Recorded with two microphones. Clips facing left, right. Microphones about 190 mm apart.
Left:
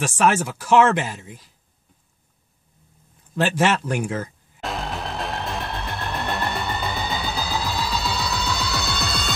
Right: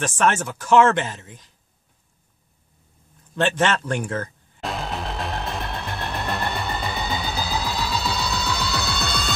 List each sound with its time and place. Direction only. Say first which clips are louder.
0.0 s speech: left 2 dB; 5° left (ahead or behind)
3.3 s music: left 1 dB; 5° left (ahead or behind)